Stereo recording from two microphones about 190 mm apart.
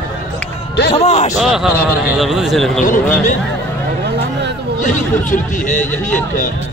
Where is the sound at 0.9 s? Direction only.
35° left (ahead or behind).